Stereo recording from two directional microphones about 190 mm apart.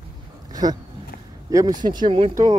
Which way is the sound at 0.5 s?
20° right (ahead or behind).